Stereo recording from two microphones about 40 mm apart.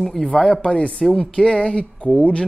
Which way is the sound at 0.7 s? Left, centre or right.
Left.